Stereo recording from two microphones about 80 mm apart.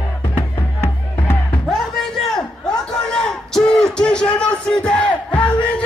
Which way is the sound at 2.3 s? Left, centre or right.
Centre.